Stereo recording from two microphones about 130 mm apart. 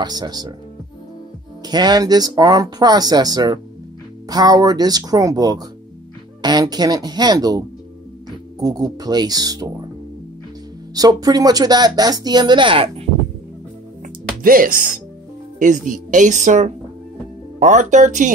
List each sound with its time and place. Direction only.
0.0 s speech: 30° right (ahead or behind)
1.6 s speech: 30° right (ahead or behind)
11.0 s speech: 30° right (ahead or behind)
14.0 s music: 90° right
15.6 s a woman's voice: 85° right